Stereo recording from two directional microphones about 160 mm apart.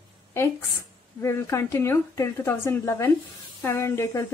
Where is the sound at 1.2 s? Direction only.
20° left (ahead or behind).